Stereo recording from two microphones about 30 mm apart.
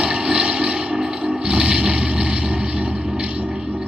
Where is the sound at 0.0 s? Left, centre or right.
Right.